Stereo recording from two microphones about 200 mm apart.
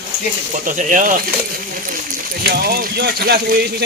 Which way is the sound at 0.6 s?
40° right (ahead or behind).